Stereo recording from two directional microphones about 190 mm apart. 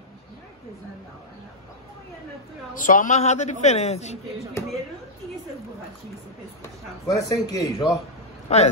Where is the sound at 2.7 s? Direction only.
45° left (ahead or behind).